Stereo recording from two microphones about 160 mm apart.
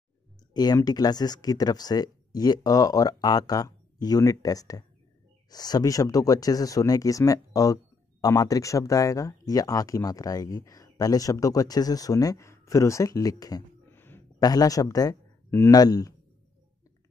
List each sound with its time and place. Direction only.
0.5 s speech: 25° left (ahead or behind)
13.8 s a sound: 15° left (ahead or behind)
14.4 s speech: 25° left (ahead or behind)